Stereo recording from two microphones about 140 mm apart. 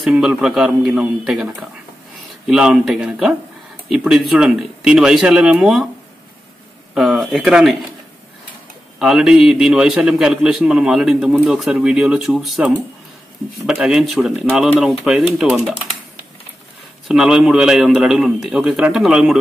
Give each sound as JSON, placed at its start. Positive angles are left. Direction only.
{"t": 0.0, "sound": "a man's voice", "side_deg": -5}
{"t": 6.9, "sound": "speech", "side_deg": 0}
{"t": 9.0, "sound": "a man's voice", "side_deg": -5}
{"t": 17.1, "sound": "a man's voice", "side_deg": -5}